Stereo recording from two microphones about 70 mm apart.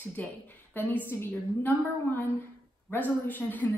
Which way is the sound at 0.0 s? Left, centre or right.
Left.